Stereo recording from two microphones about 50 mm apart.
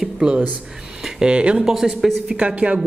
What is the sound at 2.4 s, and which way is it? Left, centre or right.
Speech, right.